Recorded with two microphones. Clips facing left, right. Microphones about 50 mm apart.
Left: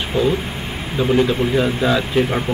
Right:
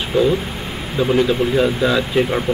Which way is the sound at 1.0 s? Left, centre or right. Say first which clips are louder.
Right 1 dB; centre.